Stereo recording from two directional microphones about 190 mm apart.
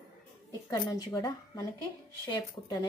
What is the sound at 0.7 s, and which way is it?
A woman's voice, 20° left (ahead or behind).